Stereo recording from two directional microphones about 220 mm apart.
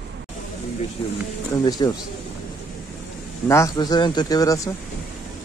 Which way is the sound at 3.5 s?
15° left (ahead or behind).